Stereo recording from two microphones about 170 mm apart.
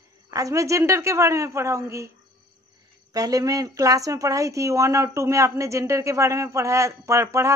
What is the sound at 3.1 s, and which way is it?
Speech, 20° right (ahead or behind).